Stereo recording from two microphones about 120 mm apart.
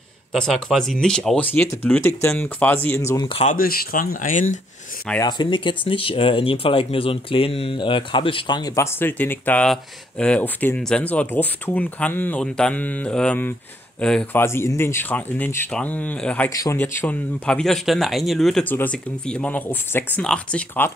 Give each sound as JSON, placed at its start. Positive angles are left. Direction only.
{"t": 0.3, "sound": "speech", "side_deg": 0}
{"t": 4.3, "sound": "speech", "side_deg": 90}
{"t": 5.2, "sound": "speech", "side_deg": 40}
{"t": 8.7, "sound": "speech", "side_deg": 15}
{"t": 14.3, "sound": "speech", "side_deg": 20}
{"t": 16.4, "sound": "speech", "side_deg": 30}
{"t": 16.7, "sound": "speech", "side_deg": 15}
{"t": 18.7, "sound": "speech", "side_deg": 15}